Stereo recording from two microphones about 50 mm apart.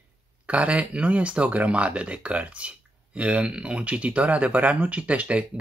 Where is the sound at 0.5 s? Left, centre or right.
Right.